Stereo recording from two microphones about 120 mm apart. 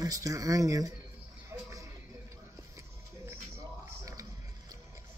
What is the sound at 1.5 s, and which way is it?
Music, 25° right (ahead or behind).